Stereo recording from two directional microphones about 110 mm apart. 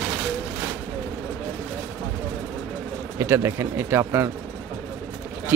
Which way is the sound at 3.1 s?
25° right (ahead or behind).